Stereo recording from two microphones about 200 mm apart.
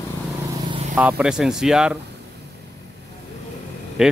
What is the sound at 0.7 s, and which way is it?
Vehicle, 30° right (ahead or behind).